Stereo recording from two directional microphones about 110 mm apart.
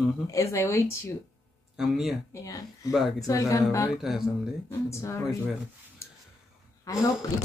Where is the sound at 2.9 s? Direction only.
Centre (ahead or behind).